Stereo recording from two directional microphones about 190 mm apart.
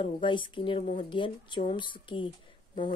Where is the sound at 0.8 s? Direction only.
40° left (ahead or behind).